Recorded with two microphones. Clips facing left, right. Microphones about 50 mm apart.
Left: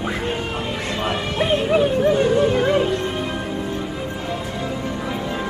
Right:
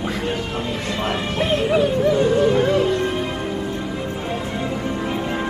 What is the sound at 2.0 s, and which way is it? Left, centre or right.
Music, left.